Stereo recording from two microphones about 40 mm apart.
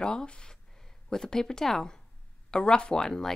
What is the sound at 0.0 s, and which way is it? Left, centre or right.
Speech, centre.